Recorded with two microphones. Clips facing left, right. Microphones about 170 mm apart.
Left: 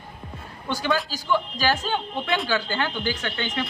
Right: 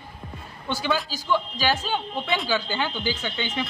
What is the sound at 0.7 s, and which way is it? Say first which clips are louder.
A man's voice: left 1 dB; 5° right (ahead or behind).